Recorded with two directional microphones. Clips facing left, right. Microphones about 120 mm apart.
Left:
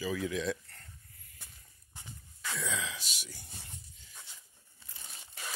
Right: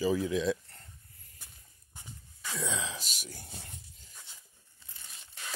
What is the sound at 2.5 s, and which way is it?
Sigh, 30° right (ahead or behind).